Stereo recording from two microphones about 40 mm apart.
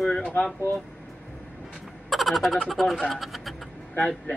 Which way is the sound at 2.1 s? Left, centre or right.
Centre.